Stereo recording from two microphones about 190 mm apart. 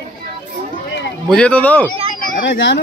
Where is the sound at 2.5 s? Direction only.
75° left (ahead or behind).